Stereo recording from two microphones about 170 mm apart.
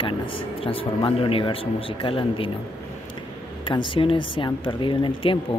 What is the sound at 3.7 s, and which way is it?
Speech, 30° left (ahead or behind).